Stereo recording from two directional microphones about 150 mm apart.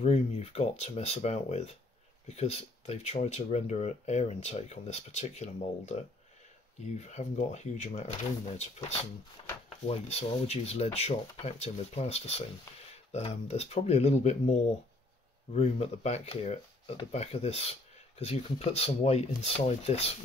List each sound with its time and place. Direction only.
0.0 s speech: 45° left (ahead or behind)